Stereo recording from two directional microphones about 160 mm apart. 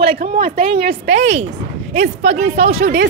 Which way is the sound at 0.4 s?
60° right (ahead or behind).